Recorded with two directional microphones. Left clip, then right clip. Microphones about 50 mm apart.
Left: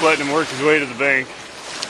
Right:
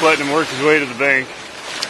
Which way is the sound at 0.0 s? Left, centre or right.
Centre.